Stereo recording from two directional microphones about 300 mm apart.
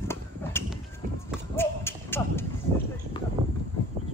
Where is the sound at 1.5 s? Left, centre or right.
Centre.